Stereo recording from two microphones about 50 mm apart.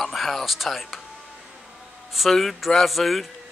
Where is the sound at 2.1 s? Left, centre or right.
Centre.